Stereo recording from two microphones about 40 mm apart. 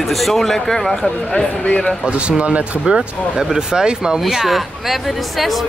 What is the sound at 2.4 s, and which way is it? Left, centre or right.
Speech, right.